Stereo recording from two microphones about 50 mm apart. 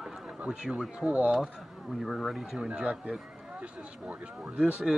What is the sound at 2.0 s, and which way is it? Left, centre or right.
Speech, centre.